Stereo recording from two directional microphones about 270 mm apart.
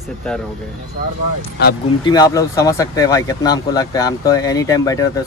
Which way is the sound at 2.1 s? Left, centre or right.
Centre.